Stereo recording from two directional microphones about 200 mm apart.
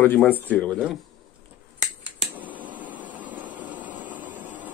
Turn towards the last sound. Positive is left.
turn(degrees=-10)  # may be behind; listen again after turning